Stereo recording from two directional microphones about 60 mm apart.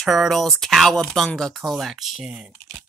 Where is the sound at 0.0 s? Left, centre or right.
Centre.